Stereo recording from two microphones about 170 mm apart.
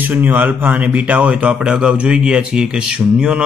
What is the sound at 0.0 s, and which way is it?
Speech, 10° right (ahead or behind).